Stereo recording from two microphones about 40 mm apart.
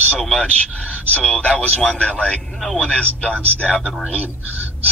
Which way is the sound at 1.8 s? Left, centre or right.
Left.